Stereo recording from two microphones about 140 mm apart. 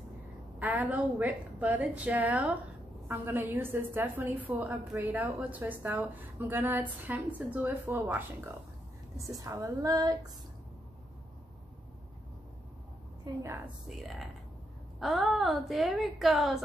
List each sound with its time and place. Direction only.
0.6 s a woman's voice: 10° right (ahead or behind)
13.2 s a woman's voice: 20° right (ahead or behind)
13.8 s a woman's voice: centre (ahead or behind)